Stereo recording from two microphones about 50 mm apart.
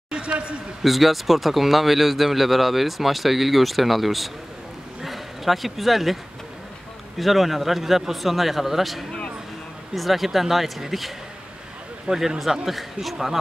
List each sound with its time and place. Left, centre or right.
0.1 s speech: centre
0.8 s speech: centre
5.0 s a sound: centre
7.2 s speech: centre
12.1 s speech: centre